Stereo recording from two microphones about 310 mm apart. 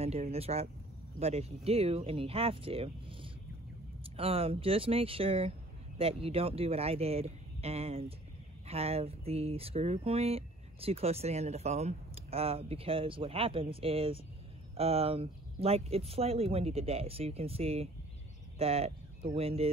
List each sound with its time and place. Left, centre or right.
0.0 s speech: centre